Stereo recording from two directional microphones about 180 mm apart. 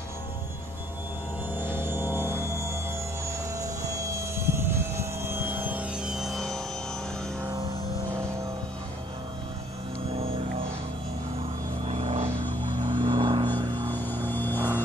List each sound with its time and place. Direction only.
1.5 s music: 10° right (ahead or behind)
3.3 s vehicle: 15° right (ahead or behind); by 6.6 s centre (ahead or behind)
10.1 s music: 30° right (ahead or behind)
11.8 s music: 35° right (ahead or behind)
13.8 s vehicle: 10° left (ahead or behind)